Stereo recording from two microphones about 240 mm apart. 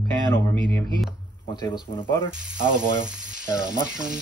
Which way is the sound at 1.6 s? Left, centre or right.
Centre.